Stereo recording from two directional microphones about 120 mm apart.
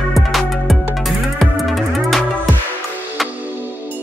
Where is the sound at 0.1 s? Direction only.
Centre (ahead or behind).